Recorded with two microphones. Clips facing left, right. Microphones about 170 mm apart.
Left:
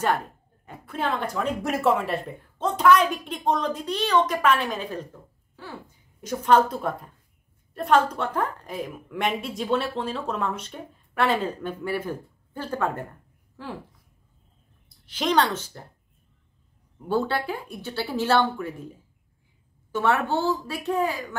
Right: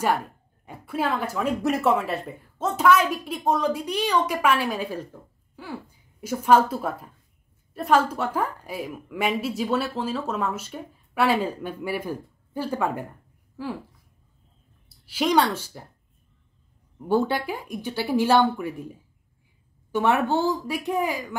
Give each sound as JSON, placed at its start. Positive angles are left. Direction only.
{"t": 0.7, "sound": "a woman's voice", "side_deg": -10}
{"t": 6.2, "sound": "a woman's voice", "side_deg": -5}
{"t": 14.9, "sound": "a woman's voice", "side_deg": -10}
{"t": 17.1, "sound": "a woman's voice", "side_deg": -15}
{"t": 19.9, "sound": "a woman's voice", "side_deg": -15}